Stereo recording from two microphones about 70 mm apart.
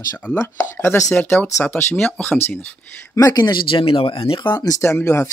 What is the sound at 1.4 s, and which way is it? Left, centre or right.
Speech, left.